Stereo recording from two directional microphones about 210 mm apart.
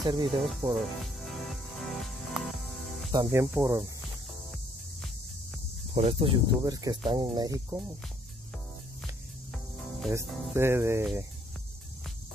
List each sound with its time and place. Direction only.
0.0 s speech: 20° right (ahead or behind)
0.4 s speech: centre (ahead or behind)
1.0 s music: centre (ahead or behind)
3.1 s music: 15° right (ahead or behind)
5.9 s speech: 30° right (ahead or behind)
7.1 s music: 20° right (ahead or behind)
10.1 s music: 10° right (ahead or behind)